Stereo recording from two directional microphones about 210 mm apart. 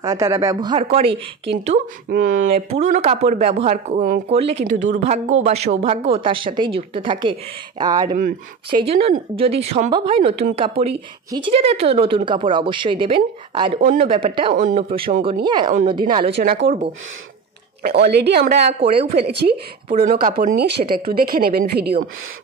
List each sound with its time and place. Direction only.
0.0 s a woman's voice: 15° right (ahead or behind)
2.0 s a woman's voice: 40° right (ahead or behind)
13.7 s speech: 40° right (ahead or behind)
14.0 s a woman's voice: 25° right (ahead or behind)
14.5 s speech: 40° right (ahead or behind)
14.8 s a woman's voice: 25° right (ahead or behind)
16.4 s a woman's voice: 45° right (ahead or behind)
17.8 s a woman's voice: 50° right (ahead or behind)
18.7 s a woman's voice: 25° right (ahead or behind)
19.4 s a woman's voice: 45° right (ahead or behind)